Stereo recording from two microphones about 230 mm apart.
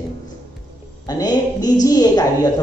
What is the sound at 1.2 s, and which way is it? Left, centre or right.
Speech, centre.